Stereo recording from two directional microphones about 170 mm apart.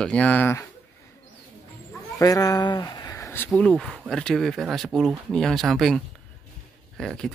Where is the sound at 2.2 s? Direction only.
20° left (ahead or behind).